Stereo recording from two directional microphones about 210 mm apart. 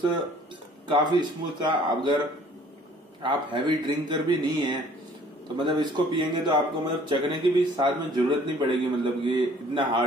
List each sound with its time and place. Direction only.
0.8 s speech: 20° right (ahead or behind)